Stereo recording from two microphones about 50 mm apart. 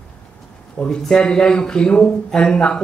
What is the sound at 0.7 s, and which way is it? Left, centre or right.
Speech, centre.